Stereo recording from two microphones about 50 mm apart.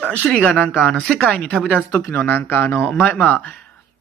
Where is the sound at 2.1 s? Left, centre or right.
Left.